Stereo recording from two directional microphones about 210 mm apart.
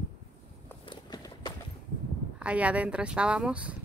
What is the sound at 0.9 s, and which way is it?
Walk, 20° left (ahead or behind).